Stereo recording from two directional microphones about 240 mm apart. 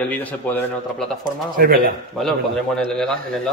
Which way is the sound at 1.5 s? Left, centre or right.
Right.